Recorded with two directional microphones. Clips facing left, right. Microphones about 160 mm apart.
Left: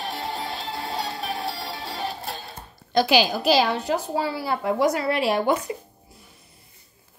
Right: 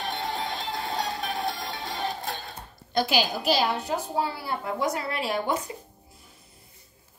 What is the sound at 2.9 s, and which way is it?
A woman's voice, 90° left.